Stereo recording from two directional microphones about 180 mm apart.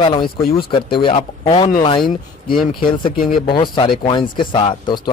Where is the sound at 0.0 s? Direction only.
25° left (ahead or behind).